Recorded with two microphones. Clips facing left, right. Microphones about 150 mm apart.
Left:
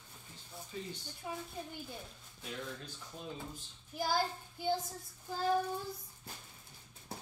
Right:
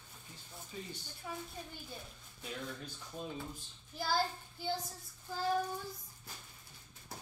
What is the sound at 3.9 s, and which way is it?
Child singing, 15° left (ahead or behind).